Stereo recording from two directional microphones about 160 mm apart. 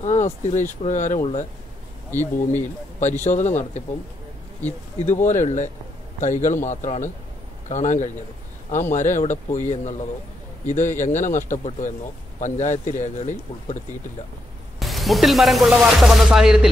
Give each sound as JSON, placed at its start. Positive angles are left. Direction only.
{"t": 0.0, "sound": "speech", "side_deg": 45}
{"t": 2.0, "sound": "speech", "side_deg": 15}
{"t": 3.0, "sound": "speech", "side_deg": 50}
{"t": 5.0, "sound": "speech", "side_deg": 50}
{"t": 14.8, "sound": "music", "side_deg": 0}